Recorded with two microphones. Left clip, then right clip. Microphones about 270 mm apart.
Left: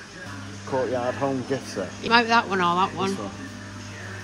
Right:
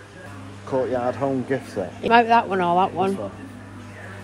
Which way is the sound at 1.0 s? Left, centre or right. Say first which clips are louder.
Right 2 dB; right.